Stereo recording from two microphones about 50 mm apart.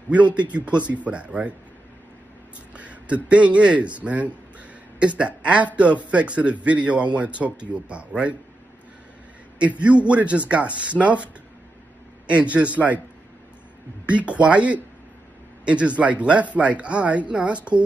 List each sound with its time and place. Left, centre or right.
0.1 s speech: right
2.7 s speech: right
9.6 s speech: right
12.3 s speech: right
14.0 s speech: right